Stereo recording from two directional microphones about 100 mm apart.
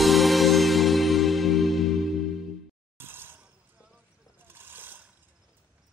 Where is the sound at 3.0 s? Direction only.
20° right (ahead or behind).